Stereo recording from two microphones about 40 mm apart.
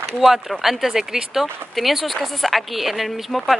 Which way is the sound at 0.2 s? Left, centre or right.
Centre.